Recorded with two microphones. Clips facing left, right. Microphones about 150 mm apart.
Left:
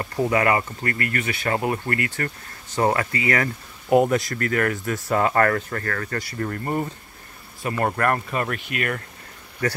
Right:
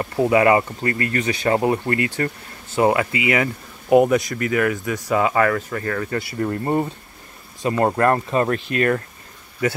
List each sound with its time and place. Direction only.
0.0 s speech: 20° right (ahead or behind)
3.9 s speech: centre (ahead or behind)
5.9 s speech: 15° right (ahead or behind); by 9.0 s 35° right (ahead or behind)